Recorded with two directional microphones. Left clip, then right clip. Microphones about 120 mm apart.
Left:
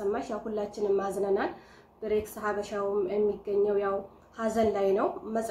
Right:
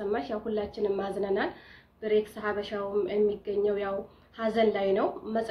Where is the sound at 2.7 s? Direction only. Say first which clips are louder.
Left 2 dB; 25° right (ahead or behind).